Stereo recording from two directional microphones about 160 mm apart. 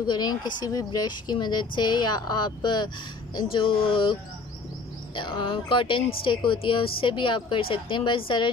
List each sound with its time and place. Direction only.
0.0 s a woman's voice: 25° left (ahead or behind)